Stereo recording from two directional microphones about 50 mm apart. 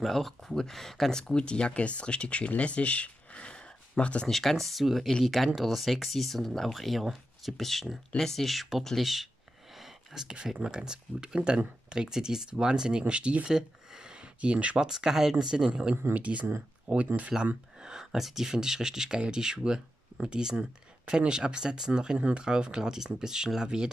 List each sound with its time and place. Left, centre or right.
0.0 s speech: centre
1.3 s speech: centre
4.3 s speech: centre; by 13.5 s right
13.5 s speech: centre
14.9 s speech: centre
16.2 s speech: right
17.7 s speech: centre